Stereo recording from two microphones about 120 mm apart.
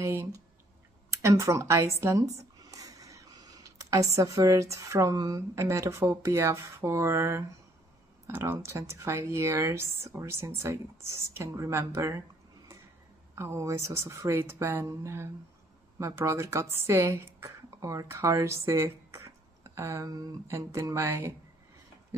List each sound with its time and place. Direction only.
0.0 s speech: 25° right (ahead or behind)
13.3 s a woman's voice: 25° right (ahead or behind)